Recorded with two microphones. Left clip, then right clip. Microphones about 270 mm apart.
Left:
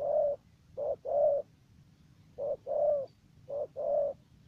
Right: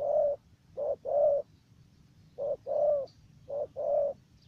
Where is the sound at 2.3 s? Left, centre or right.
Centre.